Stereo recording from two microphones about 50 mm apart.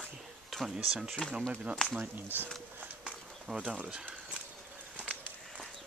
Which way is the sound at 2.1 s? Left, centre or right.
Right.